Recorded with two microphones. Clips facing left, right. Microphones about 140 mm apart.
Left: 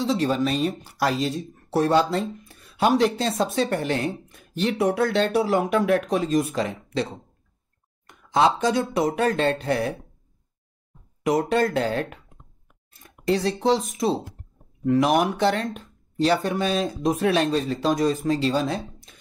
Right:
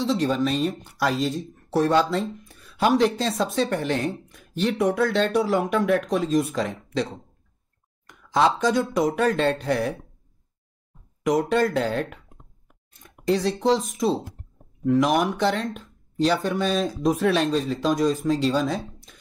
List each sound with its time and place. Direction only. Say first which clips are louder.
0.0 s speech: even; centre (ahead or behind)
8.1 s a sound: left 1 dB; 25° left (ahead or behind)
8.5 s speech: even; centre (ahead or behind)
11.2 s speech: even; centre (ahead or behind)